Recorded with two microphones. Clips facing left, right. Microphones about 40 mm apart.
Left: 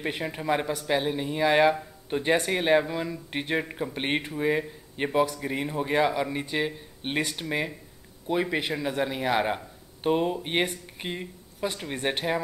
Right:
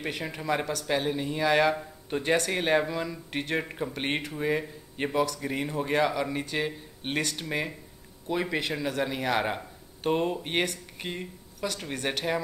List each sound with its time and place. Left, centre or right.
0.2 s speech: centre
5.1 s speech: left
5.4 s speech: centre
10.6 s speech: centre